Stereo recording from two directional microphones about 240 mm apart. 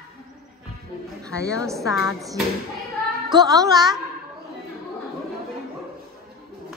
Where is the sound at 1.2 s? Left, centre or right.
Centre.